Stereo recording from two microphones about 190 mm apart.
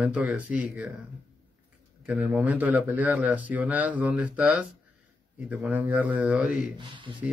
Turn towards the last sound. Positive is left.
turn(degrees=-25)  # may be behind; listen again after turning